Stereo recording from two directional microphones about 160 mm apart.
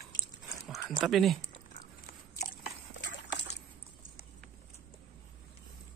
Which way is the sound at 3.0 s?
90° left.